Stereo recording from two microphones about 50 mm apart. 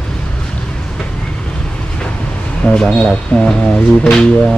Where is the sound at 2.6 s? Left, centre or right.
Centre.